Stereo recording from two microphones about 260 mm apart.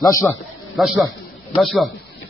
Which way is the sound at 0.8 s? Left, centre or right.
Centre.